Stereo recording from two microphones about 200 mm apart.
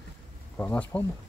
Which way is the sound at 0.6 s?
10° left (ahead or behind).